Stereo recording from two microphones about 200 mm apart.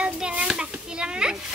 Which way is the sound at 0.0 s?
5° right (ahead or behind).